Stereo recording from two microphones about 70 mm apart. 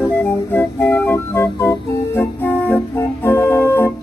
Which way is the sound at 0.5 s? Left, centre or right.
Left.